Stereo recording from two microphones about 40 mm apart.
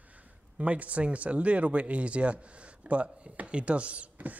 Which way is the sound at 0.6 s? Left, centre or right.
Right.